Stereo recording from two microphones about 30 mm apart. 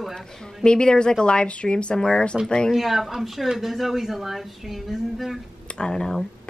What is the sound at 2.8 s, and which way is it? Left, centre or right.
A woman's voice, centre.